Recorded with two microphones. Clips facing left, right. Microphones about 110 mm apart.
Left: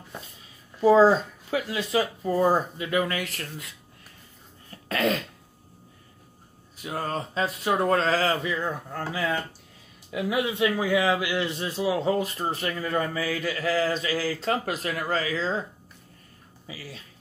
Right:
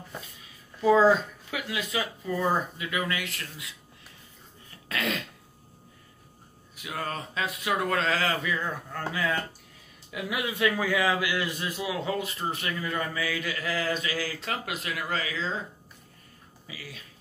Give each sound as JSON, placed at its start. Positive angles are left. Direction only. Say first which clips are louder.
{"t": 0.7, "sound": "a man's voice", "louder": "left 3 dB", "side_deg": 30}
{"t": 4.6, "sound": "throat clearing", "louder": "left 6 dB", "side_deg": 40}
{"t": 6.8, "sound": "a man's voice", "louder": "left 4 dB", "side_deg": 35}
{"t": 16.6, "sound": "a man's voice", "louder": "left 3 dB", "side_deg": 30}